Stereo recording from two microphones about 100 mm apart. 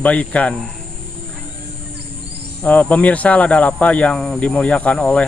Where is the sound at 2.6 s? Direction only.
15° left (ahead or behind).